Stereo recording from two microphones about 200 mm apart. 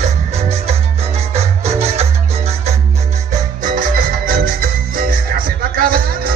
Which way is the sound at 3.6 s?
45° right (ahead or behind).